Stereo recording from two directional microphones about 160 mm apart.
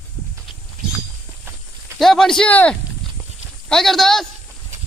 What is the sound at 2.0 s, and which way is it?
Speech, centre (ahead or behind).